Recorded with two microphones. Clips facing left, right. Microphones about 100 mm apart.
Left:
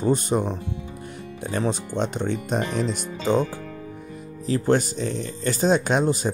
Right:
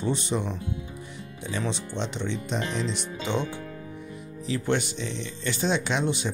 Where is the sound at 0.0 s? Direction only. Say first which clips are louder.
Left 6 dB; 45° left (ahead or behind).